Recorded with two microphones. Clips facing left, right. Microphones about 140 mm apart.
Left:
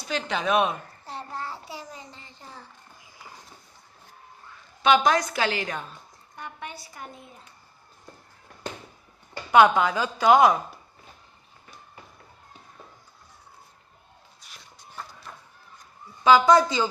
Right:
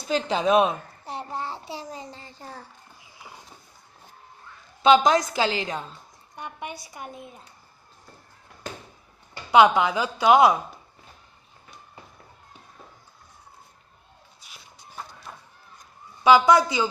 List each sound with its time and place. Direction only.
0.1 s babbling: 30° right (ahead or behind)
4.8 s a woman's voice: 20° right (ahead or behind)
9.5 s a woman's voice: 15° right (ahead or behind)
14.4 s a sound: 5° right (ahead or behind)
16.3 s a woman's voice: 10° right (ahead or behind)